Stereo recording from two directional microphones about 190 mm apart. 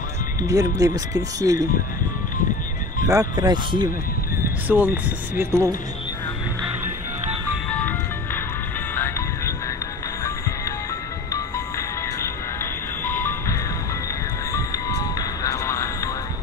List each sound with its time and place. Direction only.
0.4 s speech: 20° right (ahead or behind)
3.1 s speech: 20° right (ahead or behind)
4.6 s speech: 10° right (ahead or behind)
8.9 s music: 10° left (ahead or behind)
13.0 s music: 10° left (ahead or behind)